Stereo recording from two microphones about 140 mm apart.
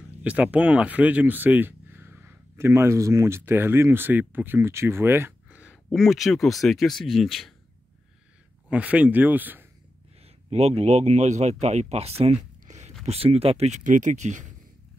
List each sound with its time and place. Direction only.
0.2 s speech: 10° right (ahead or behind)
5.7 s speech: centre (ahead or behind)
8.6 s speech: 10° right (ahead or behind)
10.2 s speech: 45° right (ahead or behind)
13.0 s speech: 45° right (ahead or behind)